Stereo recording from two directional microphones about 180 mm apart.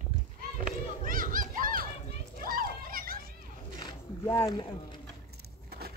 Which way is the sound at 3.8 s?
15° left (ahead or behind).